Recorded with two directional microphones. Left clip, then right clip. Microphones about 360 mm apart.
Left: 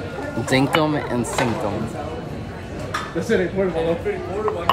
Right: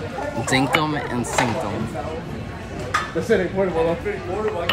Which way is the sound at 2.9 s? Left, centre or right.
Centre.